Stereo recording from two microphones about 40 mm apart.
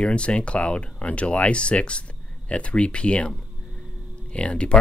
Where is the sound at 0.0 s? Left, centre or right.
Left.